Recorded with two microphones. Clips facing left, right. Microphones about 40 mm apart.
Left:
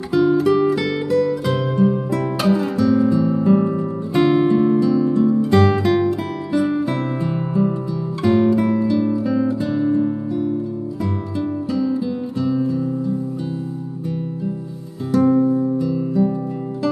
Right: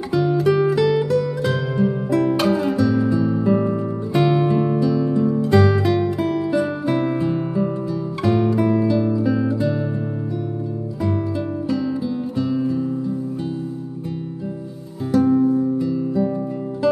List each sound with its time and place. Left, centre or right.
0.1 s music: centre
12.4 s guitar: centre
15.1 s music: centre